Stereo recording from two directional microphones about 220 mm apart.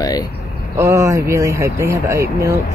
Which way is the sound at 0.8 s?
15° right (ahead or behind).